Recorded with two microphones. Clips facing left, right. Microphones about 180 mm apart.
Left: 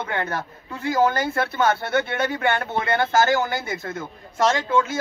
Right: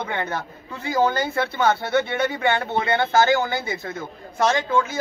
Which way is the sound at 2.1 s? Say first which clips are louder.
Right 1 dB; 20° right (ahead or behind).